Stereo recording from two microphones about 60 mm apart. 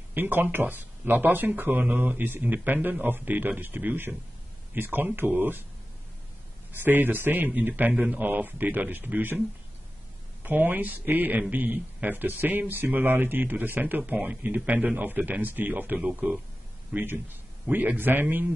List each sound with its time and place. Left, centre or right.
0.1 s speech: right
6.7 s speech: right
10.4 s speech: right
14.1 s speech: centre
16.0 s speech: centre
16.9 s speech: right